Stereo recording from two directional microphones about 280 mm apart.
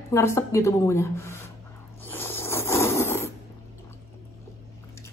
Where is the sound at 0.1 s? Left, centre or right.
Centre.